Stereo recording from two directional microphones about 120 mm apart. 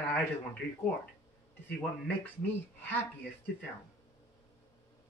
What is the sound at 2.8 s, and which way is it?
Speech, 15° left (ahead or behind).